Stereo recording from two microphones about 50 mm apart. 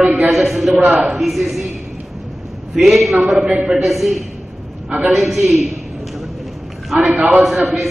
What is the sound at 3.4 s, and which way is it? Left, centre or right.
Speech, right.